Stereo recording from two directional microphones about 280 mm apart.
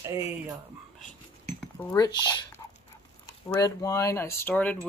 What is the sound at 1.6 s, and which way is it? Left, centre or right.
Speech, centre.